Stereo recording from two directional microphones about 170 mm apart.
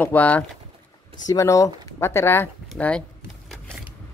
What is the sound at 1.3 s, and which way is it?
Speech, 20° left (ahead or behind).